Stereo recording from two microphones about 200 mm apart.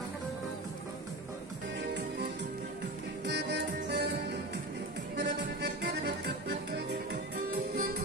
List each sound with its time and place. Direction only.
3.3 s music: 55° right (ahead or behind)
5.1 s music: 55° right (ahead or behind)